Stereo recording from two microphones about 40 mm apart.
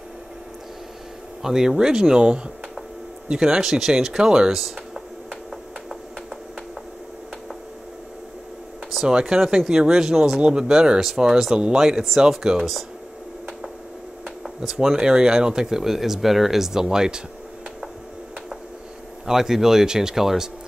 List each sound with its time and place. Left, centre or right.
1.4 s speech: centre
4.2 s speech: centre
4.6 s a sound: centre
9.0 s speech: centre
10.4 s speech: right
14.8 s speech: centre
19.2 s speech: centre